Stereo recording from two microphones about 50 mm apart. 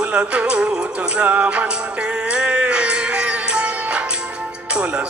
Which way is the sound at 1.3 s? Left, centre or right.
Right.